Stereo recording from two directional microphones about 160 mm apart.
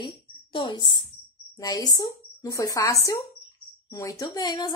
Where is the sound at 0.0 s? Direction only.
30° left (ahead or behind).